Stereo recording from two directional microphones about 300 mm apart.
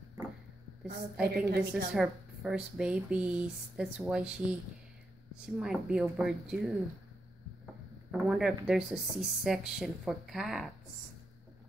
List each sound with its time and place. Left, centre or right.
1.2 s a woman's voice: right
1.6 s speech: centre
5.6 s speech: centre
8.1 s speech: centre